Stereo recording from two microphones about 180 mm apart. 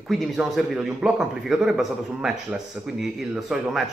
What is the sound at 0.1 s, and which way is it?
A man's voice, centre (ahead or behind).